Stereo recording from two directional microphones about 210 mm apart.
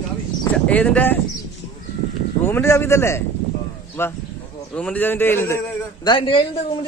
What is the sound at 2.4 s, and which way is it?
A man's voice, 10° left (ahead or behind).